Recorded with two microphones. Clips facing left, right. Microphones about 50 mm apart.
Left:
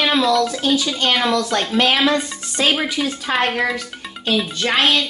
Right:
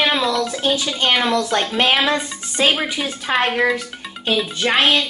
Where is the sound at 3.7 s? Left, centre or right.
Centre.